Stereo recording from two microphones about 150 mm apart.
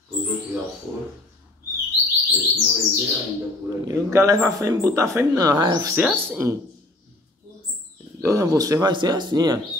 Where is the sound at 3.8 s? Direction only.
20° right (ahead or behind).